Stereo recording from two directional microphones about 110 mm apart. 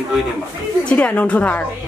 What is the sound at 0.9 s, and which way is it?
Speech, 15° left (ahead or behind).